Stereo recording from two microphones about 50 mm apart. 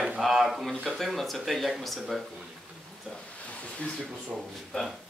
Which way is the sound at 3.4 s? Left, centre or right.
Left.